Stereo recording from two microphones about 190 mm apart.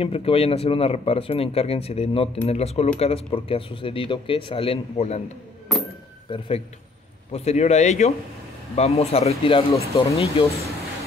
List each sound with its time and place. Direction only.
0.0 s speech: 30° left (ahead or behind)
6.3 s speech: 25° left (ahead or behind)